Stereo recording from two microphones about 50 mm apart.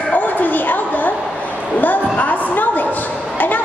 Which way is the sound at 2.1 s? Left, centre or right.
Left.